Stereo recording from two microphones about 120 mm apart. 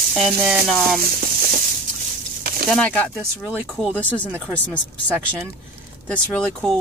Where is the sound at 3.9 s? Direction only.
15° left (ahead or behind).